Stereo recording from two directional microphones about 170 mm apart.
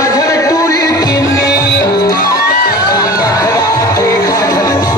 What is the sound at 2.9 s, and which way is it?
Music, 20° left (ahead or behind).